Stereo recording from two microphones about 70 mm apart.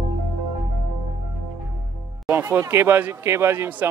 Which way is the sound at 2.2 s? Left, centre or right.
Right.